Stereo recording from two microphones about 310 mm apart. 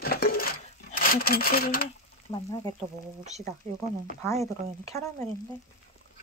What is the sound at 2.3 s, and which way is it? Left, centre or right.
Speech, centre.